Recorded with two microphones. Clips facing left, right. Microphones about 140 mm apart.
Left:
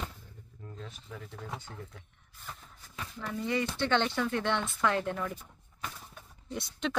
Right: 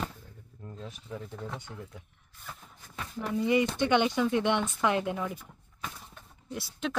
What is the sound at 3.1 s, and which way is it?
Speech, 20° right (ahead or behind).